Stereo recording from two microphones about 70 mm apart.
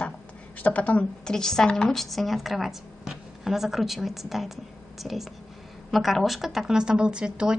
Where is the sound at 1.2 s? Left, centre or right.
Centre.